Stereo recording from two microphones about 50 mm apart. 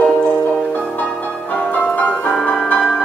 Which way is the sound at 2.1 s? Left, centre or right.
Centre.